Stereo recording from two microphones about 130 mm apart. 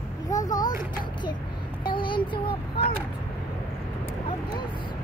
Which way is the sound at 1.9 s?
40° left (ahead or behind).